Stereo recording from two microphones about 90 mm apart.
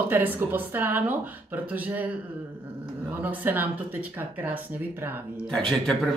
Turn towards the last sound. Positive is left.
turn(degrees=5)  # may be behind; listen again after turning